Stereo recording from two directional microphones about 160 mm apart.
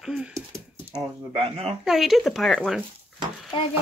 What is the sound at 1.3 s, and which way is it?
Speech, 35° right (ahead or behind).